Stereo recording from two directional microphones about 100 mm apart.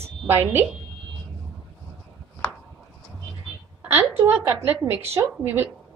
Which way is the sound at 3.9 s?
20° right (ahead or behind).